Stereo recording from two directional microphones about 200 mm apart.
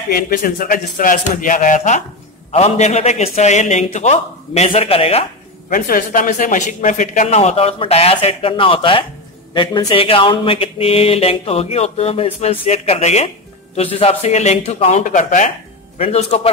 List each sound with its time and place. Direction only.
0.1 s a man's voice: 45° left (ahead or behind)
5.7 s a man's voice: 45° left (ahead or behind)